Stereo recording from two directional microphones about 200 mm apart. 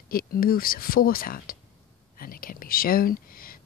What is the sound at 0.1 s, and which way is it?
Speech, 45° left (ahead or behind).